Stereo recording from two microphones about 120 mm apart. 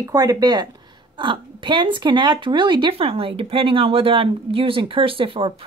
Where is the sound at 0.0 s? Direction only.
30° right (ahead or behind).